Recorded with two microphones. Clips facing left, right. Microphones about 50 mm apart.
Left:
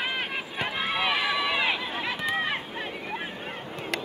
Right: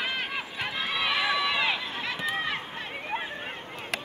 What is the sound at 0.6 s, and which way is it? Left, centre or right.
Run, left.